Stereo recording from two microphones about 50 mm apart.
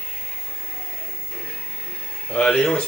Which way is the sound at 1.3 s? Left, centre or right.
Centre.